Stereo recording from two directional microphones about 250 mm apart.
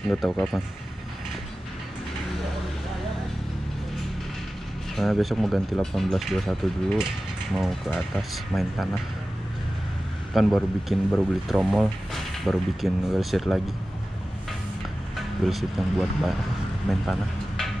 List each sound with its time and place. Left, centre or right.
0.1 s speech: centre
4.9 s speech: centre
10.3 s speech: centre
15.4 s speech: centre